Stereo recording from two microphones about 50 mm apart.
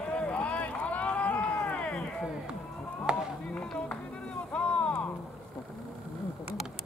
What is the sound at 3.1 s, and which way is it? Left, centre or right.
Chop, centre.